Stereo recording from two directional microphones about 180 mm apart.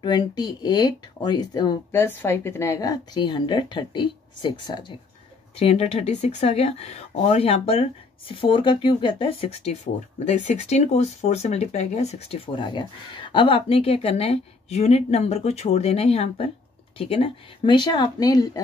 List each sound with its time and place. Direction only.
0.0 s speech: 25° left (ahead or behind)
5.6 s speech: 35° left (ahead or behind)